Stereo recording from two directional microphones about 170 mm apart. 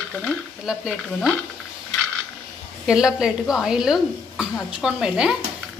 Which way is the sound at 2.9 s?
5° right (ahead or behind).